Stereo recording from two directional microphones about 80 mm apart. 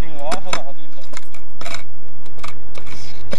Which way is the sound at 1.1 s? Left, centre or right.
Centre.